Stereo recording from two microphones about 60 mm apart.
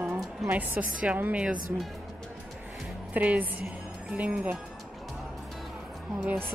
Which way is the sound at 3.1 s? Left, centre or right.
Right.